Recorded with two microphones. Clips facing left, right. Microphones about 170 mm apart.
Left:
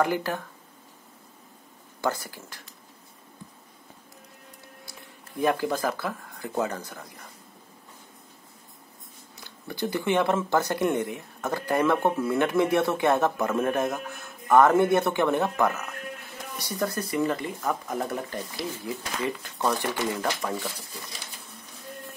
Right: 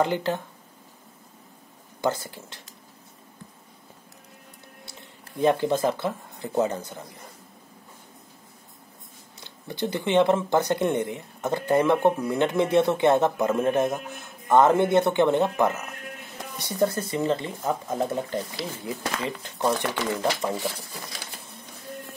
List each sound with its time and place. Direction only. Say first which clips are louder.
0.0 s speech: right 1 dB; 25° right (ahead or behind)
2.0 s speech: right 2 dB; 20° right (ahead or behind)
5.4 s speech: right 3 dB; 25° right (ahead or behind)
9.4 s speech: right 1 dB; 20° right (ahead or behind)